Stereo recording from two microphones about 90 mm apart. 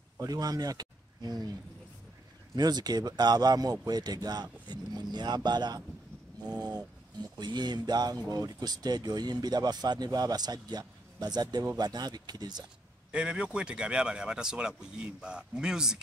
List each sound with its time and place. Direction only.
0.2 s speech: 45° right (ahead or behind)
2.5 s speech: 50° right (ahead or behind)
13.1 s a man's voice: 10° right (ahead or behind)